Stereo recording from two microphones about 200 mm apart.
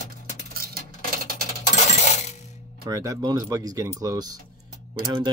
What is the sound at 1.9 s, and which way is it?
Coin, 35° left (ahead or behind).